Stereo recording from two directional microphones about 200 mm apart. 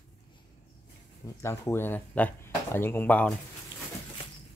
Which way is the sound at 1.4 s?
10° left (ahead or behind).